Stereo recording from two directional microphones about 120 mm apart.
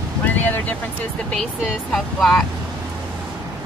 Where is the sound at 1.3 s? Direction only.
5° left (ahead or behind).